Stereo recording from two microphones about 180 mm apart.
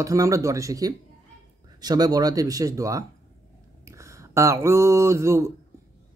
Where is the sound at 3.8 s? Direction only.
15° right (ahead or behind).